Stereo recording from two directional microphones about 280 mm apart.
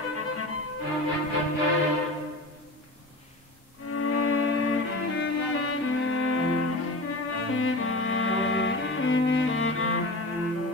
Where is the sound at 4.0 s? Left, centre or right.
Left.